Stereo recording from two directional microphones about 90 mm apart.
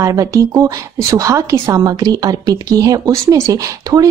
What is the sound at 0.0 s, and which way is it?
A woman's voice, 40° right (ahead or behind).